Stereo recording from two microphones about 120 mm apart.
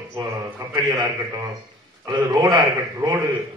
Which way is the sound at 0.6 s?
30° right (ahead or behind).